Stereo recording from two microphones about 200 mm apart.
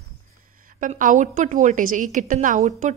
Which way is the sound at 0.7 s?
40° right (ahead or behind).